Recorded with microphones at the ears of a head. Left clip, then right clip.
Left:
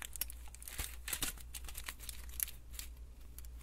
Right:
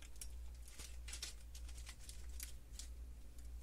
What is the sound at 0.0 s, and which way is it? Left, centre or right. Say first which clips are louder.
Crumpling: left 12 dB; left.